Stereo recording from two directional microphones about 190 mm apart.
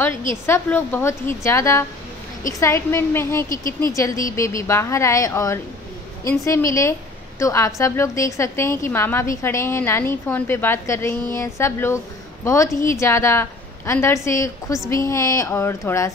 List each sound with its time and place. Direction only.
0.5 s a woman's voice: 10° left (ahead or behind)
3.4 s speech: 45° left (ahead or behind)
3.8 s a woman's voice: 15° left (ahead or behind)